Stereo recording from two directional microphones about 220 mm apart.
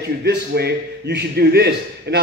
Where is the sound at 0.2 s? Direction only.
50° right (ahead or behind).